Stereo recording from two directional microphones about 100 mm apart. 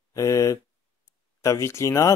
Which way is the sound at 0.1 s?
35° left (ahead or behind).